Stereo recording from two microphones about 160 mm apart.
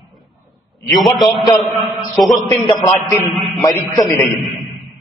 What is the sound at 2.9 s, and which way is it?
Speech, 15° left (ahead or behind).